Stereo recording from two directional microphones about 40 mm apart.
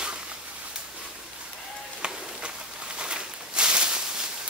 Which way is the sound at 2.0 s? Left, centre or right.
Right.